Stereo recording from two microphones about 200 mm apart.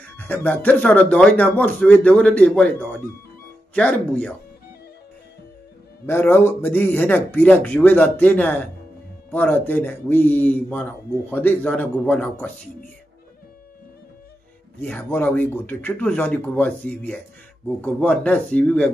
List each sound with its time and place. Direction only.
0.3 s a man's voice: 10° left (ahead or behind)
6.0 s a man's voice: 10° left (ahead or behind)
14.8 s a man's voice: 10° left (ahead or behind)